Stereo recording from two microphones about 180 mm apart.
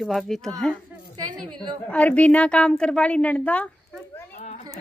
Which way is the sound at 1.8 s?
5° left (ahead or behind).